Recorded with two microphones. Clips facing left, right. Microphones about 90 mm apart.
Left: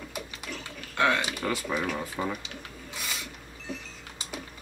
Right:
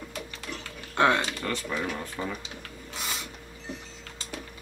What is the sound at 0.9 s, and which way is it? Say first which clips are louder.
Speech: right 3 dB; 25° right (ahead or behind).